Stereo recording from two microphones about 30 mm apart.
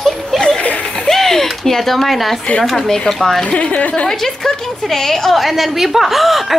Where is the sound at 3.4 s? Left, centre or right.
Left.